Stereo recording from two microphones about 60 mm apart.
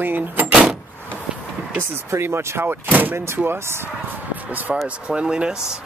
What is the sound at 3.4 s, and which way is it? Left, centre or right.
Speech, right.